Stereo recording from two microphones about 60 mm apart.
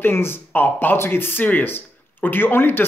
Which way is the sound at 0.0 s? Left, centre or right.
Left.